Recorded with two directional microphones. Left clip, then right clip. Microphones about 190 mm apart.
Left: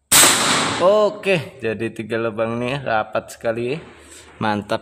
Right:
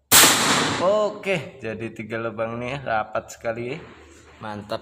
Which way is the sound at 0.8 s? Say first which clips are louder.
Left 9 dB; 35° left (ahead or behind).